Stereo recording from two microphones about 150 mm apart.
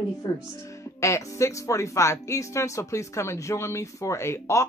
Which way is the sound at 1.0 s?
20° left (ahead or behind).